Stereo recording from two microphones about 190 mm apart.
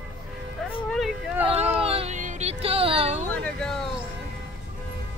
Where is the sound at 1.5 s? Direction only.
35° right (ahead or behind).